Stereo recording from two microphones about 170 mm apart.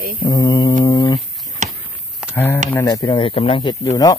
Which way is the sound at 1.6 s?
45° right (ahead or behind).